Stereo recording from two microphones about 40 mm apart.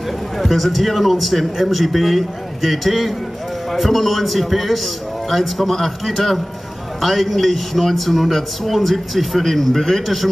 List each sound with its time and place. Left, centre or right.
0.4 s a man's voice: centre